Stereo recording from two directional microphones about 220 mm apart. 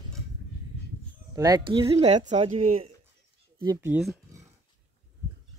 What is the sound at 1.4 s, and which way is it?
Speech, 15° right (ahead or behind).